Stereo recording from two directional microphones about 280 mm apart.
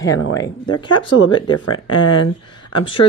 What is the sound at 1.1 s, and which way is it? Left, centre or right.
Speech, left.